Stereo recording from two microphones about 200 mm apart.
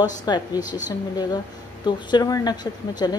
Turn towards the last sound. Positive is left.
turn(degrees=20)  # may be behind; listen again after turning